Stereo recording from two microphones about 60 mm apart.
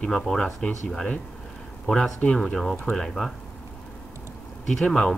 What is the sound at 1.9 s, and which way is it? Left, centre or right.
Speech, centre.